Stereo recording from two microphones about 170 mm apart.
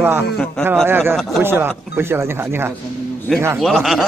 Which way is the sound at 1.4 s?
15° right (ahead or behind).